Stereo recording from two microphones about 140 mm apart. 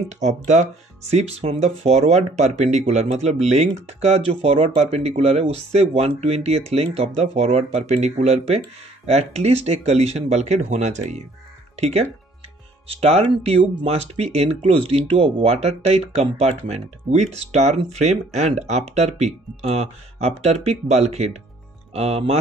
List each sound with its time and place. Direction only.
0.1 s speech: 60° right (ahead or behind)